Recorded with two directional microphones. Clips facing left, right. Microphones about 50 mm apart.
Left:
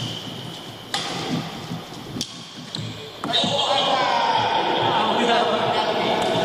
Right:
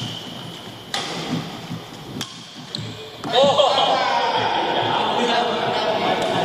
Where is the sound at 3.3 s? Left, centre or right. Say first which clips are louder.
Right 7 dB; right.